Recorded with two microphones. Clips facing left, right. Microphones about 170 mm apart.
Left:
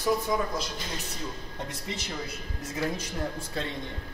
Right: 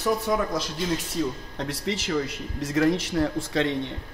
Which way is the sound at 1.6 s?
90° right.